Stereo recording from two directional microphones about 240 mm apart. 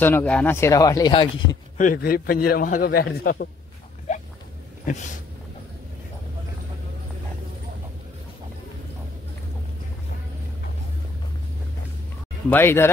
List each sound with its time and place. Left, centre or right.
0.0 s speech: centre
1.8 s a man's voice: left
4.9 s a man's voice: left
12.4 s speech: centre